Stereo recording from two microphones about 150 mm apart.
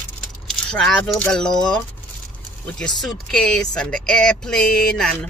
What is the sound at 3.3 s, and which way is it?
A woman's voice, 5° left (ahead or behind).